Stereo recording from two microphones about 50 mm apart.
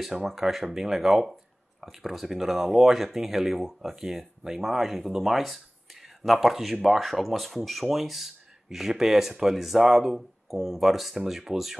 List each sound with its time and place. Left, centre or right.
0.1 s speech: centre